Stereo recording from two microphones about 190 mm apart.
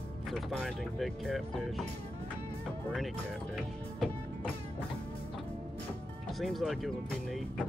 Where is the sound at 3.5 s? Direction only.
Centre (ahead or behind).